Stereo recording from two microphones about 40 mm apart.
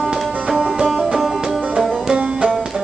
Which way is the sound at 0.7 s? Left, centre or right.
Centre.